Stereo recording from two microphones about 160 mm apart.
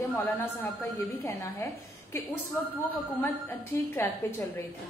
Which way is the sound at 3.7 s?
15° left (ahead or behind).